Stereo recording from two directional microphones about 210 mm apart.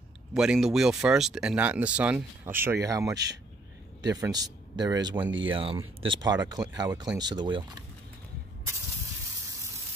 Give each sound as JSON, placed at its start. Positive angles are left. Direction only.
{"t": 0.3, "sound": "speech", "side_deg": 0}